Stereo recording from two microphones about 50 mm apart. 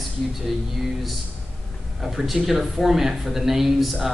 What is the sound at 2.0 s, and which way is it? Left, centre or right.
Speech, centre.